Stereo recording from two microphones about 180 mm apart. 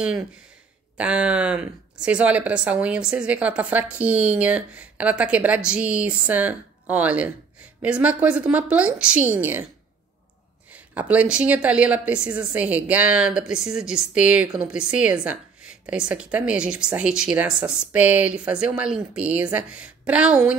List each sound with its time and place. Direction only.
0.9 s speech: 5° right (ahead or behind)
10.7 s speech: 10° right (ahead or behind)